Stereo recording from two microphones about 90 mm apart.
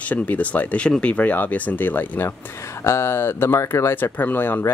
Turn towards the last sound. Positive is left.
turn(degrees=20)  # may be behind; listen again after turning